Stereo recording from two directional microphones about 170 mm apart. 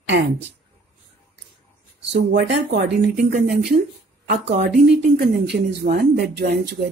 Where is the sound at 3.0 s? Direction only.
70° right (ahead or behind).